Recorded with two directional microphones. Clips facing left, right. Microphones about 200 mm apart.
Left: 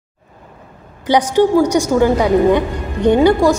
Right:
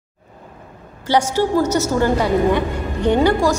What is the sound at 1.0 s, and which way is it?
A woman's voice, 15° left (ahead or behind).